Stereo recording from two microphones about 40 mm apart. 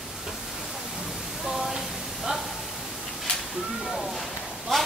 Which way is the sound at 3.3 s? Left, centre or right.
Left.